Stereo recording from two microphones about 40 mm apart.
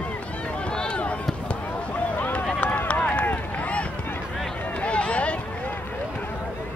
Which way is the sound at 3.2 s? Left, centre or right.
Left.